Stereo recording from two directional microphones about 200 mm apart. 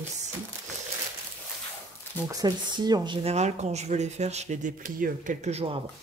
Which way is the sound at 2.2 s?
20° right (ahead or behind).